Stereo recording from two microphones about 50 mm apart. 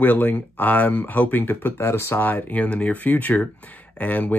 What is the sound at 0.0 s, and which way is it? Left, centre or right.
Speech, left.